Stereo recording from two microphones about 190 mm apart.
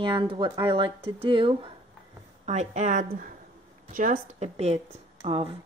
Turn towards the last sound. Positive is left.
turn(degrees=-30)  # may be behind; listen again after turning